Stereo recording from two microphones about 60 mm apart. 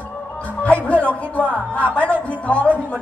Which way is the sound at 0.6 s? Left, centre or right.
Left.